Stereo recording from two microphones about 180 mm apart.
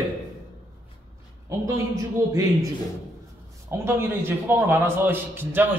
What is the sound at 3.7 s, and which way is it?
A man's voice, 15° right (ahead or behind).